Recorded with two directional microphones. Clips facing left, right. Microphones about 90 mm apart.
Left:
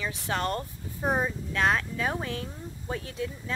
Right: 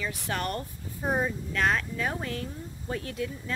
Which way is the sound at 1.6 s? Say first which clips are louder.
Left 1 dB; 15° left (ahead or behind).